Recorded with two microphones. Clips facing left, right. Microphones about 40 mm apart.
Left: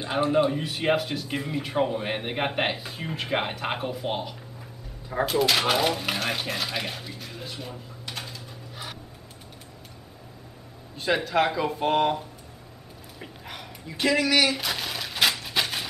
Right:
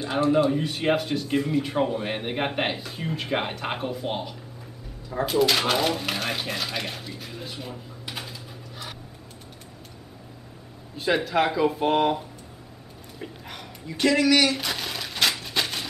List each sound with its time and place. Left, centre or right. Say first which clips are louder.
0.0 s a man's voice: right 1 dB; centre
0.5 s speech: right 1 dB; centre
11.0 s speech: right 1 dB; centre
13.2 s a sound: right 2 dB; centre